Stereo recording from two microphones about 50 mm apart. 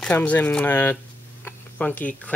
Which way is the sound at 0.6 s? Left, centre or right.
Left.